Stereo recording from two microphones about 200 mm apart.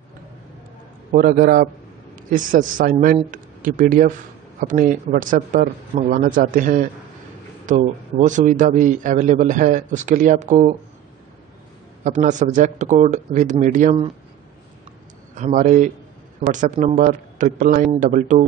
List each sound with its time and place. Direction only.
1.1 s a man's voice: 45° right (ahead or behind)
12.0 s a man's voice: 40° right (ahead or behind)
15.3 s a man's voice: 40° right (ahead or behind)